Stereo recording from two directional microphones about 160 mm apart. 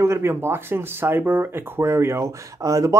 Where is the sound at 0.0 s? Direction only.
15° right (ahead or behind).